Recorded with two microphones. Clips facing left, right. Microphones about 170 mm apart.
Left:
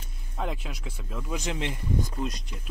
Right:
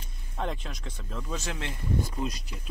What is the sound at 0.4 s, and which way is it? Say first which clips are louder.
Speech: even; 5° left (ahead or behind).